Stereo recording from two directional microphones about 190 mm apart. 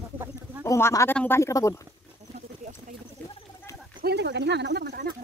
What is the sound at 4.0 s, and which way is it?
Speech, 60° right (ahead or behind).